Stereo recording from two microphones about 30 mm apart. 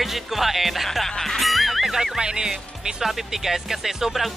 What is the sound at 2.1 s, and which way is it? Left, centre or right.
Speech, right.